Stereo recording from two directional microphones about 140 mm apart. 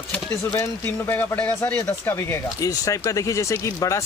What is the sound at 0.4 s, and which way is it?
Speech, 20° left (ahead or behind).